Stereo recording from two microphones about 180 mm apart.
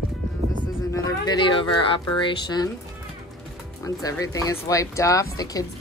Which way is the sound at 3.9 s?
20° left (ahead or behind).